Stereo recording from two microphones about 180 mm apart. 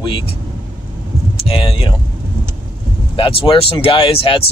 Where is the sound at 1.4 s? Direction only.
30° left (ahead or behind).